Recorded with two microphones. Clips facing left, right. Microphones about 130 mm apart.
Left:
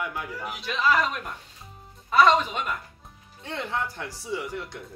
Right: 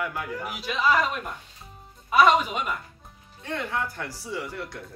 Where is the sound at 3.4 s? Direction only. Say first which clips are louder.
Right 1 dB; 25° left (ahead or behind).